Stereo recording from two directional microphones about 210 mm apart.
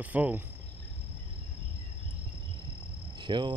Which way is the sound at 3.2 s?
20° right (ahead or behind).